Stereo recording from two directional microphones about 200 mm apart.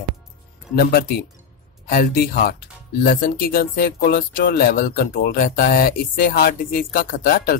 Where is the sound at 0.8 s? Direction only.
50° left (ahead or behind).